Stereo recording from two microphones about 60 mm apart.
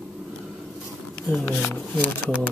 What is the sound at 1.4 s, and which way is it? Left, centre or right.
Speech, left.